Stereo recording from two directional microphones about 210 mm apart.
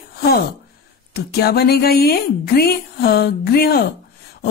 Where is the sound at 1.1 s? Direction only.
50° left (ahead or behind).